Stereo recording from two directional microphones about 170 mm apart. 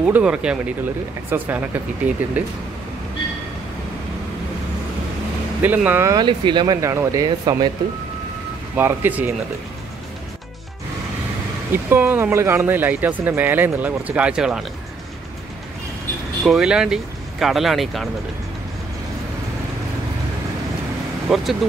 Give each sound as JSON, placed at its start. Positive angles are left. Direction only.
{"t": 0.0, "sound": "speech", "side_deg": -5}
{"t": 5.6, "sound": "speech", "side_deg": -10}
{"t": 8.7, "sound": "speech", "side_deg": -10}
{"t": 11.7, "sound": "speech", "side_deg": -10}
{"t": 16.4, "sound": "speech", "side_deg": -5}
{"t": 21.3, "sound": "speech", "side_deg": -5}